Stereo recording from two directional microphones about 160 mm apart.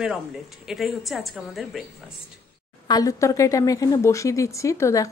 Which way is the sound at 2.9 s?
20° left (ahead or behind).